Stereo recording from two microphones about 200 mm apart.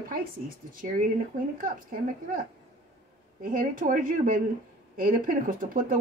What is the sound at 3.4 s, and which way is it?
Speech, 45° right (ahead or behind).